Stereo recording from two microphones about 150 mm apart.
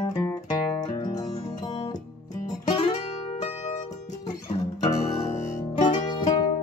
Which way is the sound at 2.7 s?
40° left (ahead or behind).